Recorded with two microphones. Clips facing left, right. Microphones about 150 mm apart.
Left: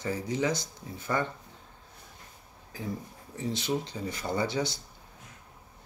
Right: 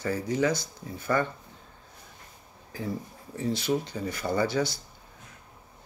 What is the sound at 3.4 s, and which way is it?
Speech, 20° left (ahead or behind).